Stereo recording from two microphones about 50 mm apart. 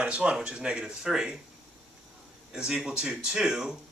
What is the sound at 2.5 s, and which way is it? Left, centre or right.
Speech, centre.